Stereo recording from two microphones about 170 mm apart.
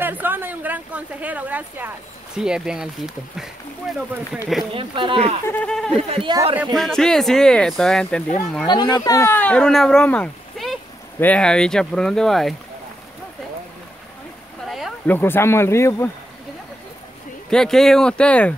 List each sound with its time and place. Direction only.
0.0 s a woman's voice: 10° right (ahead or behind)
4.7 s speech: 30° right (ahead or behind)
5.5 s speech: 5° left (ahead or behind)
5.9 s speech: 35° right (ahead or behind)
6.5 s speech: 5° right (ahead or behind)
8.6 s speech: 25° left (ahead or behind); by 12.5 s centre (ahead or behind)
15.0 s speech: 10° left (ahead or behind)
17.5 s speech: 5° left (ahead or behind)